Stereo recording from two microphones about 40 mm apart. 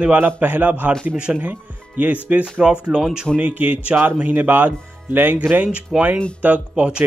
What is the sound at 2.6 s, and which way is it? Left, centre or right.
Speech, right.